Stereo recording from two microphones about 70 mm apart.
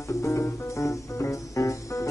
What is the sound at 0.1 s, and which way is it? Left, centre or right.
Music, left.